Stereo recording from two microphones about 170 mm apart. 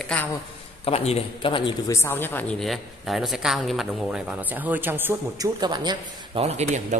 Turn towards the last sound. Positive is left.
turn(degrees=-40)  # may be behind; listen again after turning